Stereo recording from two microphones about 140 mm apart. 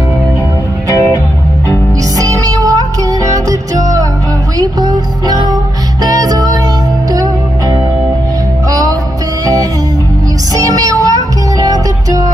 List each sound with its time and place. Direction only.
2.1 s music: 25° right (ahead or behind)
10.5 s child singing: 25° right (ahead or behind)